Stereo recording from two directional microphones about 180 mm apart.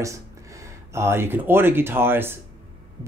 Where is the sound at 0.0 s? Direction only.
15° right (ahead or behind).